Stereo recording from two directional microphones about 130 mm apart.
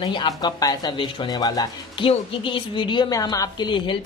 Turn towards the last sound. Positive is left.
turn(degrees=35)  # may be behind; listen again after turning